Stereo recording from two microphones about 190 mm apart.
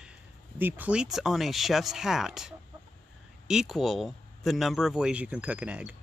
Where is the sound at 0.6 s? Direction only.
10° right (ahead or behind).